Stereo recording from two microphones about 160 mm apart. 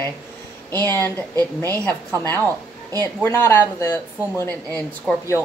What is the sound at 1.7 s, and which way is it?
Speech, 20° right (ahead or behind).